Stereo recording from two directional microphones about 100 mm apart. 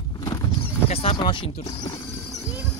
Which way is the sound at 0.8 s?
75° left (ahead or behind).